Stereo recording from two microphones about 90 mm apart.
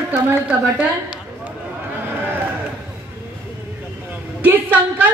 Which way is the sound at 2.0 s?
20° right (ahead or behind).